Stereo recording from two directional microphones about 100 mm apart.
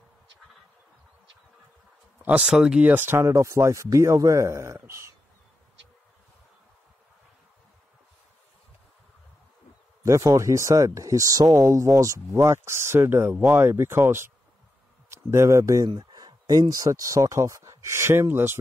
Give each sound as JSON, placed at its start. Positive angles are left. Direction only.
{"t": 2.2, "sound": "speech", "side_deg": -15}
{"t": 10.0, "sound": "a man's voice", "side_deg": -30}